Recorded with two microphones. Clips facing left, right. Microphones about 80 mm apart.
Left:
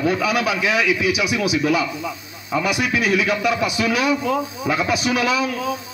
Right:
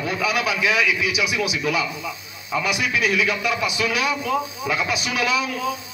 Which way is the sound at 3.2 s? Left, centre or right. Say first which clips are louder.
Left 3 dB; left.